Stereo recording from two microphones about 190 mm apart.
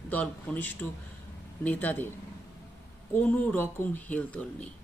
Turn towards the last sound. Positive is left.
turn(degrees=5)  # may be behind; listen again after turning